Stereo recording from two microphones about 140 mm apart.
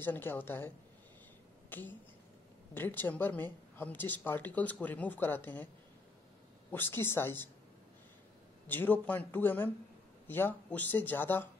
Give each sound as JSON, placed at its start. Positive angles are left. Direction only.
{"t": 0.0, "sound": "speech", "side_deg": 15}
{"t": 6.7, "sound": "speech", "side_deg": 15}
{"t": 8.6, "sound": "speech", "side_deg": 15}